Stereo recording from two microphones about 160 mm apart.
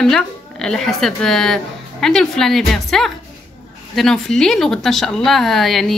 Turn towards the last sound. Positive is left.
turn(degrees=0)  # may be behind; listen again after turning